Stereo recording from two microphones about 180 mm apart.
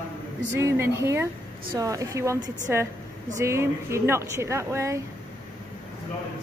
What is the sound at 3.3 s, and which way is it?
A woman's voice, 15° right (ahead or behind).